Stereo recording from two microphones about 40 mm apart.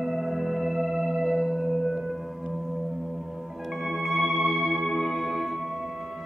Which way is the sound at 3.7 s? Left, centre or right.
Centre.